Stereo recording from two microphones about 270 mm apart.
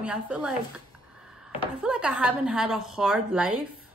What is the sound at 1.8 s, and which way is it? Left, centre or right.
Speech, centre.